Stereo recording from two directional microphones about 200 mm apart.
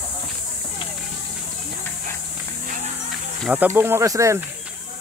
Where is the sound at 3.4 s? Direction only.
10° right (ahead or behind).